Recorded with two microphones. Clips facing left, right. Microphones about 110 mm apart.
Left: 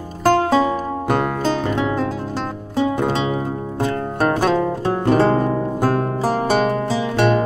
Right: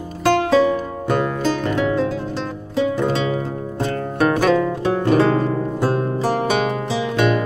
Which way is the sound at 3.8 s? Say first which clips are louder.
Even; 35° left (ahead or behind).